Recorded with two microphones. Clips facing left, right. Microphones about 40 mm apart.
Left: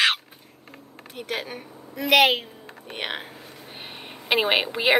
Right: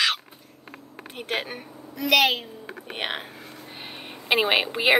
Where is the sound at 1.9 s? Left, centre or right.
Left.